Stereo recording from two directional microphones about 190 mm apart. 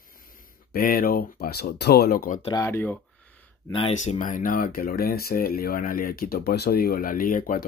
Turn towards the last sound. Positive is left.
turn(degrees=45)  # may be behind; listen again after turning